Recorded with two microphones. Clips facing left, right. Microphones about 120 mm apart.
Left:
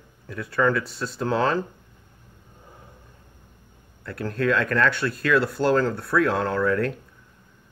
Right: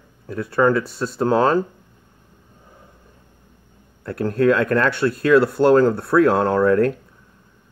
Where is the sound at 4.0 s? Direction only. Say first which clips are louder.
Right 7 dB; 40° right (ahead or behind).